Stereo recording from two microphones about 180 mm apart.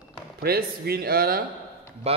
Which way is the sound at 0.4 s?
60° right (ahead or behind).